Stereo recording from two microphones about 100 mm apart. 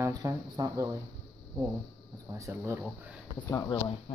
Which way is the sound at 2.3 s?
30° right (ahead or behind).